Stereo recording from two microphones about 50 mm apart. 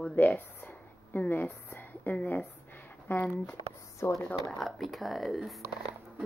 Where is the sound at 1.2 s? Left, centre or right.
Left.